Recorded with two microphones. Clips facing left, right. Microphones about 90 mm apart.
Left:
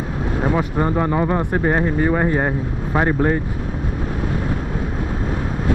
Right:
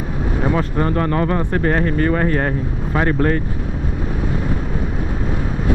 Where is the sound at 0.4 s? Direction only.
15° left (ahead or behind).